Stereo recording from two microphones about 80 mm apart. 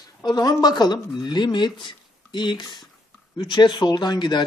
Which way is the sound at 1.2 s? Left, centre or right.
Left.